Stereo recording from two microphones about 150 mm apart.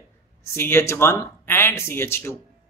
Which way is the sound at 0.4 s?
15° left (ahead or behind).